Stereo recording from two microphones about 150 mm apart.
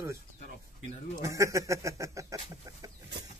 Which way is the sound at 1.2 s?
20° right (ahead or behind).